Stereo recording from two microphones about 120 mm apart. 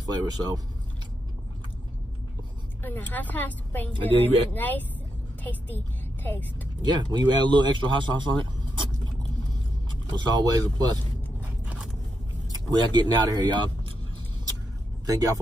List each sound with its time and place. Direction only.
0.0 s speech: 30° right (ahead or behind)
2.8 s a woman's voice: 15° left (ahead or behind)
6.8 s speech: 35° right (ahead or behind)
9.8 s speech: 40° right (ahead or behind)
12.5 s speech: 35° right (ahead or behind)
15.0 s speech: 30° right (ahead or behind)